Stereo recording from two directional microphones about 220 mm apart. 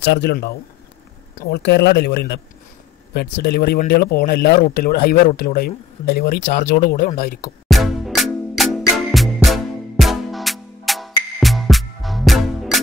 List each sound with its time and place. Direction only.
0.0 s speech: 50° left (ahead or behind)
7.6 s music: centre (ahead or behind)